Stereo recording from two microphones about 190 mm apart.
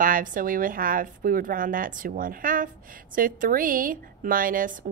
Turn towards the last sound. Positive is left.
turn(degrees=-45)  # may be behind; listen again after turning